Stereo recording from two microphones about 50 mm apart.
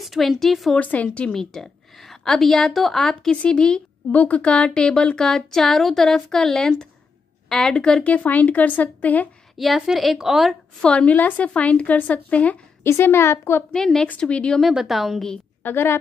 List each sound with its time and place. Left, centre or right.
0.0 s a woman's voice: centre
0.7 s a woman's voice: left
1.3 s a woman's voice: centre
4.1 s a woman's voice: left
9.6 s a woman's voice: centre
10.8 s a woman's voice: left
12.8 s a woman's voice: left
13.7 s a woman's voice: centre
14.2 s a woman's voice: left
14.7 s a woman's voice: centre
15.6 s a woman's voice: left